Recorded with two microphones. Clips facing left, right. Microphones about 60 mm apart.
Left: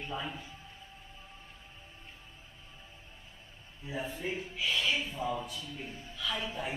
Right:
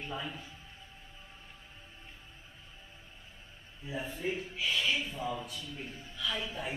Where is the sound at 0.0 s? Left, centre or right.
Centre.